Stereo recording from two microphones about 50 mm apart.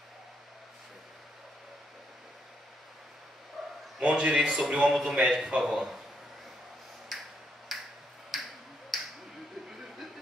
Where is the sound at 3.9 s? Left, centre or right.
Right.